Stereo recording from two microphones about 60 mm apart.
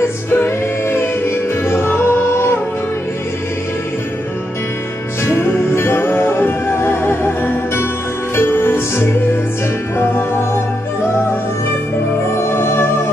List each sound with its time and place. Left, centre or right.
0.3 s music: left
5.2 s music: left
12.5 s music: left